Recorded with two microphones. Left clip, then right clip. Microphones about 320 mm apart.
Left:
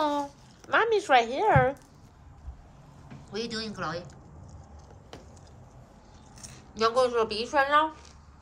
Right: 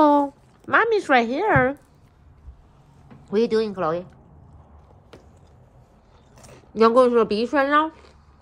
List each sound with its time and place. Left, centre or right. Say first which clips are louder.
0.7 s a woman's voice: right 5 dB; right
3.3 s speech: right 14 dB; centre
6.3 s speech: right 13 dB; centre